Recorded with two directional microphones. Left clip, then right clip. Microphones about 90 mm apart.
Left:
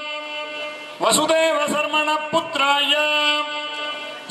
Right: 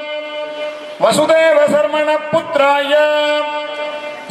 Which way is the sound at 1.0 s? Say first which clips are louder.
Right 7 dB; 20° left (ahead or behind).